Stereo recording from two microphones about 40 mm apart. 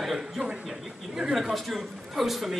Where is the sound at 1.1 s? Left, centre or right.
Centre.